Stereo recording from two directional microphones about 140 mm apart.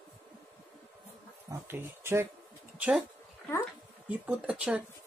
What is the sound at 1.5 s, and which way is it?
Speech, 15° right (ahead or behind).